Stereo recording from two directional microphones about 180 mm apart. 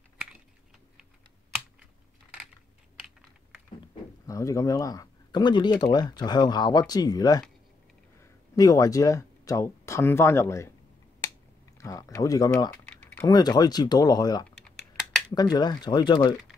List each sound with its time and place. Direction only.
4.3 s speech: 15° left (ahead or behind)
8.5 s speech: 20° left (ahead or behind)
11.8 s speech: 20° left (ahead or behind)
12.8 s typing: 10° left (ahead or behind)
13.3 s speech: 20° left (ahead or behind)